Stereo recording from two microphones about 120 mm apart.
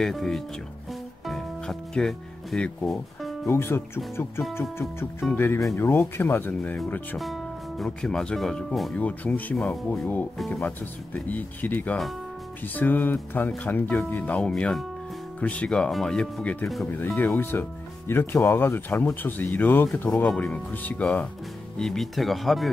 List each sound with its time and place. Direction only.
0.0 s speech: 5° left (ahead or behind)
1.2 s music: centre (ahead or behind)
3.4 s speech: 20° left (ahead or behind)
7.8 s speech: 5° left (ahead or behind)
10.3 s speech: 5° left (ahead or behind)
11.1 s speech: 15° left (ahead or behind)
17.2 s speech: 15° left (ahead or behind); by 22.7 s centre (ahead or behind)